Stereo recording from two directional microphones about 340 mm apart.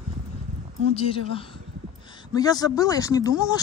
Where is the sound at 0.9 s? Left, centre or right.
Centre.